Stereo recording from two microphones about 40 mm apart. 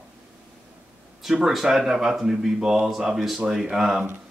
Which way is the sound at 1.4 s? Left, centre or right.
Centre.